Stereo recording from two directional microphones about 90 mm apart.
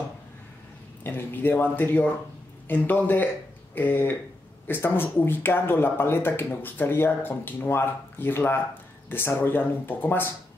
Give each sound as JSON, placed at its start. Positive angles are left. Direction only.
{"t": 1.0, "sound": "speech", "side_deg": 25}